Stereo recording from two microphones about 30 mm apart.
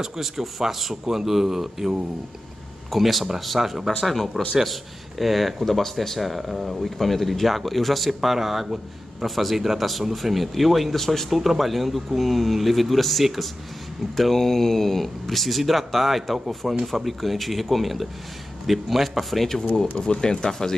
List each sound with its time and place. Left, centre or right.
0.0 s speech: centre
2.9 s speech: centre
5.7 s speech: centre
6.1 s speech: centre
20.0 s speech: left